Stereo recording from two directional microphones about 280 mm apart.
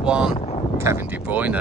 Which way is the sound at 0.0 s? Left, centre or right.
Centre.